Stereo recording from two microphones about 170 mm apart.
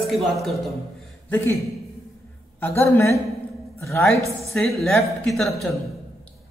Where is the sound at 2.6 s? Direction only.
15° left (ahead or behind).